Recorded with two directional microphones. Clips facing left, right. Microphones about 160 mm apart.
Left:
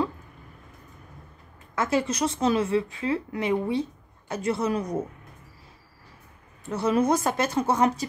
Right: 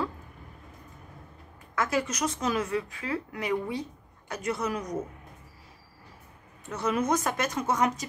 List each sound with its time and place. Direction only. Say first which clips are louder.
1.8 s a woman's voice: left 4 dB; 25° left (ahead or behind)
6.7 s speech: left 4 dB; 30° left (ahead or behind)